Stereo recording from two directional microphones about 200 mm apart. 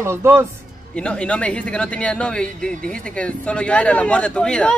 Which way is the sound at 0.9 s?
5° left (ahead or behind).